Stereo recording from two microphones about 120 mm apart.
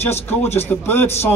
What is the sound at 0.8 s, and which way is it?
Speech, 20° left (ahead or behind).